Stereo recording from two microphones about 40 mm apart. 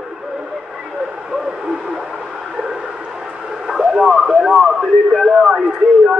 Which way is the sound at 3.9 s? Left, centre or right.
Centre.